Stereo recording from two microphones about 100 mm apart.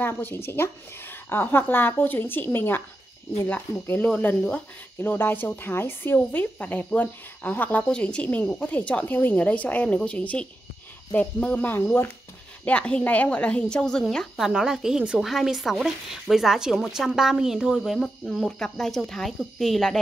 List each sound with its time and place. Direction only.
0.0 s a woman's voice: 20° left (ahead or behind)
12.6 s a woman's voice: 10° left (ahead or behind)